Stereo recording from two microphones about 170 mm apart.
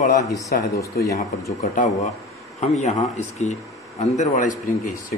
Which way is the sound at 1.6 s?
50° left (ahead or behind).